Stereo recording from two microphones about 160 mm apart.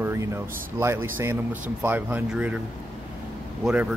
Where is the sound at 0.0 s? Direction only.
15° right (ahead or behind).